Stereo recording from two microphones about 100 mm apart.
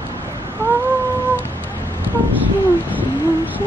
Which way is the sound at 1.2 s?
20° left (ahead or behind).